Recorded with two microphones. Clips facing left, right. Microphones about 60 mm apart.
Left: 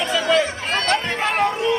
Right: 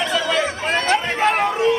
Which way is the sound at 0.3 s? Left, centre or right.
Centre.